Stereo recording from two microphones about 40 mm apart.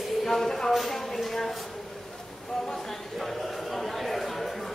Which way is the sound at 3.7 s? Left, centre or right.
Centre.